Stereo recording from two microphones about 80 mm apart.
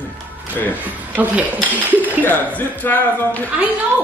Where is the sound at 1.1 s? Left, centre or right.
Centre.